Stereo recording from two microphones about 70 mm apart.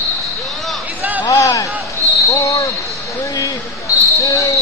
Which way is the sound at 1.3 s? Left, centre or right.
Left.